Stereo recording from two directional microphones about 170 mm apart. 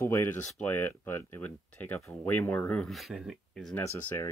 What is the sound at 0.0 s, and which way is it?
Speech, 15° left (ahead or behind).